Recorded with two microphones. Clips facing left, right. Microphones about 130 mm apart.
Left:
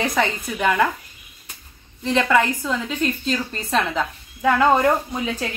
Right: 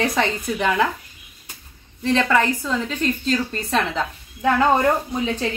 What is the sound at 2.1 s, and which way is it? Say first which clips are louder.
A woman's voice: left 1 dB; 10° left (ahead or behind).